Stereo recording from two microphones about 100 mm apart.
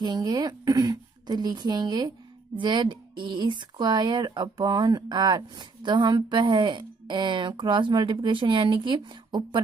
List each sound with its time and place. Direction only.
0.0 s speech: 45° right (ahead or behind)